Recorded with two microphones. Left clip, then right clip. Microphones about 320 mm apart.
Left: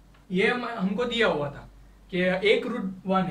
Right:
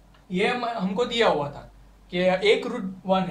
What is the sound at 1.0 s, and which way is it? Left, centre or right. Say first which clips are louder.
Speech: right 3 dB; centre.